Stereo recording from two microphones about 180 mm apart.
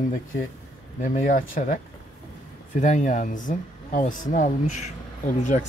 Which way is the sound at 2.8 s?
40° left (ahead or behind).